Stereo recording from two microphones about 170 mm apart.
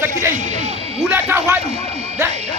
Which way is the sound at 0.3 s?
45° right (ahead or behind).